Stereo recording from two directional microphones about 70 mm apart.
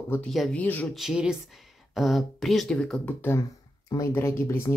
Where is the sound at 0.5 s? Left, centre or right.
Centre.